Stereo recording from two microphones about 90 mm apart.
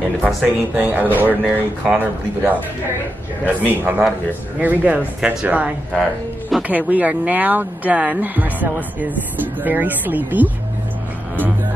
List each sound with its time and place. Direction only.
0.2 s speech: 5° right (ahead or behind)
0.7 s speech: 20° right (ahead or behind)
6.7 s speech: 15° right (ahead or behind)